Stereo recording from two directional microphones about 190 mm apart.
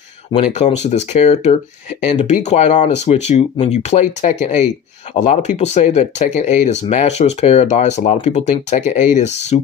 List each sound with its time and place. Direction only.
0.3 s speech: 35° left (ahead or behind)